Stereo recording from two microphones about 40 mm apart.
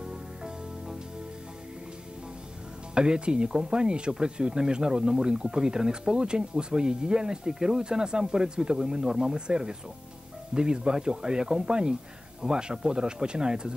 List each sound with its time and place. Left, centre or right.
0.0 s music: centre
2.9 s speech: right